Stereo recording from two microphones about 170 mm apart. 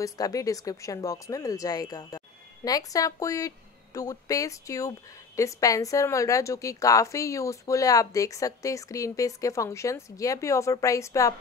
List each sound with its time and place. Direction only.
0.0 s speech: 20° left (ahead or behind)